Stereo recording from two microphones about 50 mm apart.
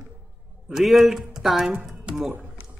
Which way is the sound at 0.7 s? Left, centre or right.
Centre.